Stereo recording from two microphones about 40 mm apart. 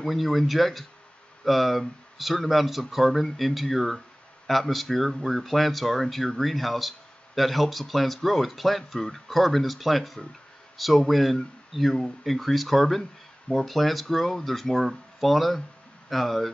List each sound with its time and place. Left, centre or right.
0.0 s speech: centre